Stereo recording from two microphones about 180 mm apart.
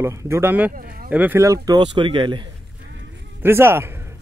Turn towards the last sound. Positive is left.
turn(degrees=-15)  # may be behind; listen again after turning